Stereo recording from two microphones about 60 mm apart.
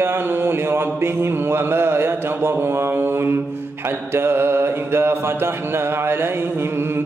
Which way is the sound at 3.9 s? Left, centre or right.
Right.